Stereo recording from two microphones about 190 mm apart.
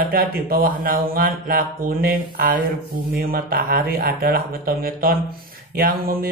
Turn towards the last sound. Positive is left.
turn(degrees=-50)  # may be behind; listen again after turning